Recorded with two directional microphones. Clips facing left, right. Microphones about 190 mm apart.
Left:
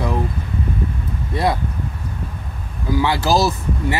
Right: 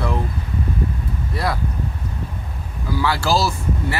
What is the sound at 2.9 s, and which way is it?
Speech, 20° left (ahead or behind).